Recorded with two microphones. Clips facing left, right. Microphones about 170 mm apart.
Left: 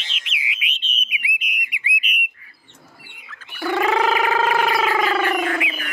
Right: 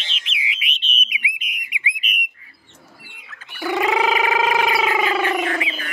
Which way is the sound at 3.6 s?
15° right (ahead or behind).